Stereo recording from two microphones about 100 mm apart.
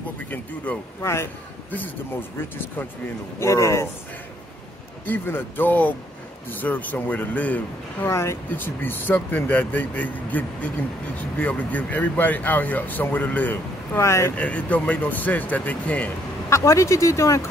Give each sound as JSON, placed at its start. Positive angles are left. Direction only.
{"t": 0.3, "sound": "speech", "side_deg": 20}
{"t": 3.3, "sound": "speech", "side_deg": 30}
{"t": 5.0, "sound": "speech", "side_deg": 20}
{"t": 8.1, "sound": "speech", "side_deg": 30}
{"t": 14.3, "sound": "speech", "side_deg": 15}
{"t": 16.4, "sound": "speech", "side_deg": 30}